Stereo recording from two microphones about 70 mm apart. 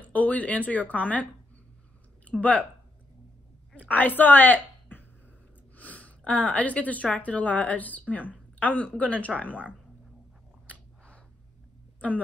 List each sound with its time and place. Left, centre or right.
0.0 s speech: left
2.2 s speech: centre
3.7 s speech: left
9.5 s speech: right